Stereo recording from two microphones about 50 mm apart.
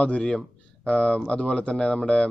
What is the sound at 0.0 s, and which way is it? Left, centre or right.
A man's voice, left.